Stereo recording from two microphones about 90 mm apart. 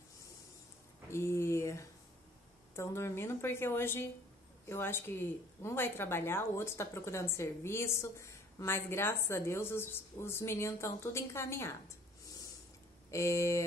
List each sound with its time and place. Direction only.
1.1 s a sound: 30° left (ahead or behind)
2.7 s a woman's voice: 30° left (ahead or behind)
13.1 s a woman's voice: 35° left (ahead or behind)